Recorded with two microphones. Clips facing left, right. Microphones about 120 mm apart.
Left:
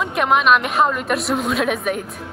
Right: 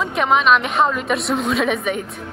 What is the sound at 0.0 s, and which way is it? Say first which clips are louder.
A woman's voice: even; centre (ahead or behind).